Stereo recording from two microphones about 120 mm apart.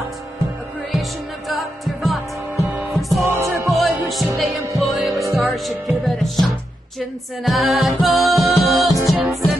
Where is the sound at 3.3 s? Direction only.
20° right (ahead or behind).